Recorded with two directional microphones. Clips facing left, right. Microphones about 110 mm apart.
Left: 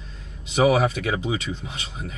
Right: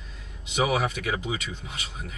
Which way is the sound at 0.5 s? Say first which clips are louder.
Left 6 dB; 35° left (ahead or behind).